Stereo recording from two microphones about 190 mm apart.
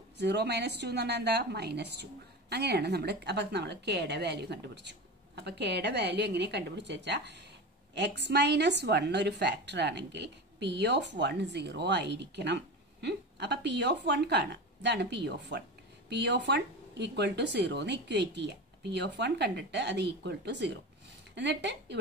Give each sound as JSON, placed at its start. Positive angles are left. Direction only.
{"t": 0.2, "sound": "a woman's voice", "side_deg": -60}